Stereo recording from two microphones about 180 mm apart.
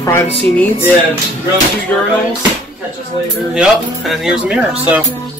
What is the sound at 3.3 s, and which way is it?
Speech, centre (ahead or behind).